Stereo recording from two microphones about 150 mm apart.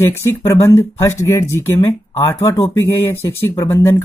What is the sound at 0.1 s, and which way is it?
Speech, 15° left (ahead or behind).